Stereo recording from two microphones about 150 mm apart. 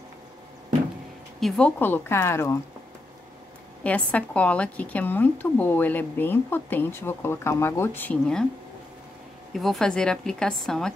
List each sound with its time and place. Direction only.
1.4 s speech: 10° left (ahead or behind)
3.8 s speech: 10° left (ahead or behind)
9.5 s a woman's voice: centre (ahead or behind)